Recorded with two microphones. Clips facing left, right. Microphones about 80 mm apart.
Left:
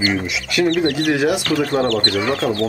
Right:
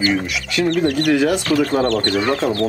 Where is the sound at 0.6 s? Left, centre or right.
Left.